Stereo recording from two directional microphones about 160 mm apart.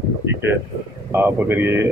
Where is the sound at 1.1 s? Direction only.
15° right (ahead or behind).